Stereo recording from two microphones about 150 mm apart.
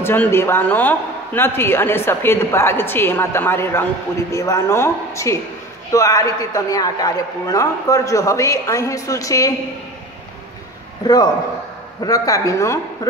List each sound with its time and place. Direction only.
0.0 s a man's voice: 15° left (ahead or behind)
12.0 s a man's voice: 25° left (ahead or behind)